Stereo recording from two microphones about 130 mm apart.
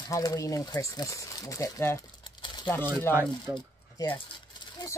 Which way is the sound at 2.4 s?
35° left (ahead or behind).